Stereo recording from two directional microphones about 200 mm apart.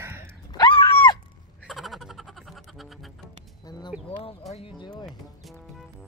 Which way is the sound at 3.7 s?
20° left (ahead or behind).